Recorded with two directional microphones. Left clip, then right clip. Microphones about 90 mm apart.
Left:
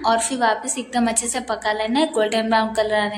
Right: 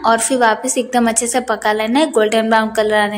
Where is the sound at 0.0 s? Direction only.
25° right (ahead or behind).